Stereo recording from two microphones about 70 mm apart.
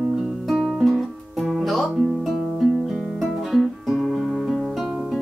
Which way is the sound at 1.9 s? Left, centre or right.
Centre.